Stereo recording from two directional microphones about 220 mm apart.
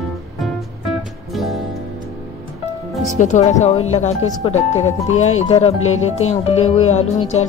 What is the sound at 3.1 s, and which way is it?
A woman's voice, 35° left (ahead or behind).